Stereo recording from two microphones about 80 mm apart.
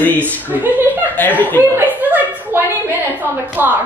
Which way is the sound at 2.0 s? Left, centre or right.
Right.